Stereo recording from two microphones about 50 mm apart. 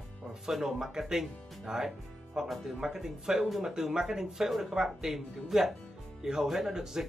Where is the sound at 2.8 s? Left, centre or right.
Centre.